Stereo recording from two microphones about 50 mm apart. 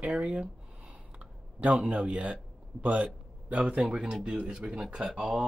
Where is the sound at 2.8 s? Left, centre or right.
Right.